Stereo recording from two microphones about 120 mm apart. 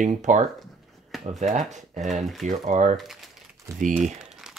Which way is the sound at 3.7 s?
25° right (ahead or behind).